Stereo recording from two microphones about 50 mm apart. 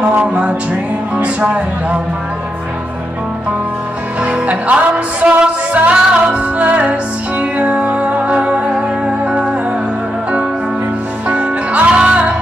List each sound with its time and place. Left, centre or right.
0.0 s music: right
1.1 s speech: right
4.2 s music: right
11.2 s music: right